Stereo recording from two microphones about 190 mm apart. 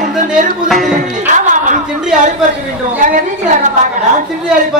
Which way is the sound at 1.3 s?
40° right (ahead or behind).